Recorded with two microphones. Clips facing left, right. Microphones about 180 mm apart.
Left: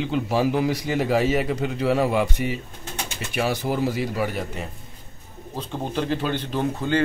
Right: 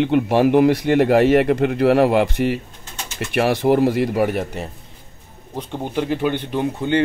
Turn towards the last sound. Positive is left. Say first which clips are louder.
# right 3 dB
turn(degrees=-20)  # may be behind; listen again after turning